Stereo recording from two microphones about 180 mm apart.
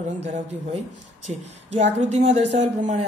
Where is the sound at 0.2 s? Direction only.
40° right (ahead or behind).